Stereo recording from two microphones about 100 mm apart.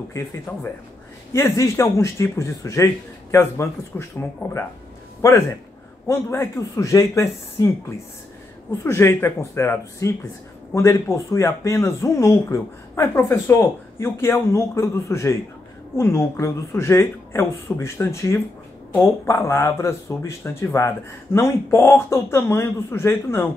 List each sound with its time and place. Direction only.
0.5 s speech: 25° left (ahead or behind)
8.8 s speech: 25° left (ahead or behind)